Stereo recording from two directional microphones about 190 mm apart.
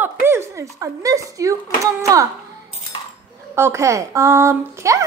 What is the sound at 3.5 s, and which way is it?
Speech, 15° right (ahead or behind).